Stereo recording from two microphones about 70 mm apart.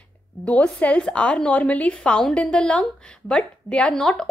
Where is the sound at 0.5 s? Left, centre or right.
Centre.